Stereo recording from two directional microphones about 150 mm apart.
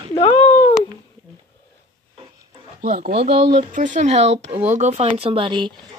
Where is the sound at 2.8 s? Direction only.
55° right (ahead or behind).